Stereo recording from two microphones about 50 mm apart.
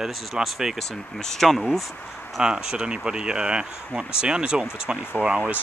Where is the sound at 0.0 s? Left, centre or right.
Centre.